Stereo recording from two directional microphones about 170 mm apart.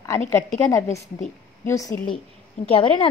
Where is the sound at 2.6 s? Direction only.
35° left (ahead or behind).